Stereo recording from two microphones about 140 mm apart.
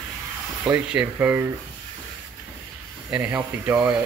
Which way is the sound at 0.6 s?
10° right (ahead or behind).